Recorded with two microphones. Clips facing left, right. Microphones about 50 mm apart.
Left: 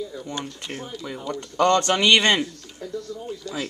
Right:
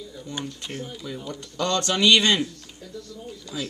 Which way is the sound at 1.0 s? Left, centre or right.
Left.